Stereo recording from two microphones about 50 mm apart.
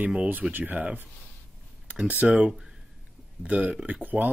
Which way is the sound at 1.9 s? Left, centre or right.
Right.